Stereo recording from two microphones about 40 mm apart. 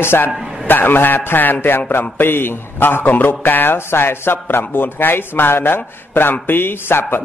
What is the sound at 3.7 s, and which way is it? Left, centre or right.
A man's voice, left.